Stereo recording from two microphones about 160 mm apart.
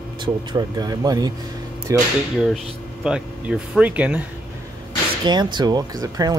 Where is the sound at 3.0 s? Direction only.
5° right (ahead or behind).